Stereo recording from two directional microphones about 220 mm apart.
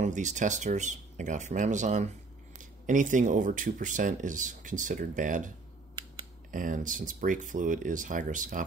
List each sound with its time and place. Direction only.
0.0 s speech: 35° right (ahead or behind)
6.5 s speech: 35° right (ahead or behind)